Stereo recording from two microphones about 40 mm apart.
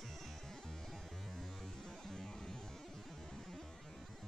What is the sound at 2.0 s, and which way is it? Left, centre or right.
Music, centre.